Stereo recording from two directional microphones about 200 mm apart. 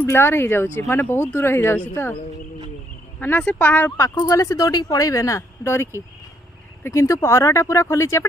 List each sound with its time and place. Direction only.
0.0 s speech: 10° left (ahead or behind)
3.2 s speech: 10° left (ahead or behind)